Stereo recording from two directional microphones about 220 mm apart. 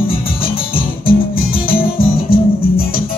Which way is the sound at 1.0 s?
40° left (ahead or behind).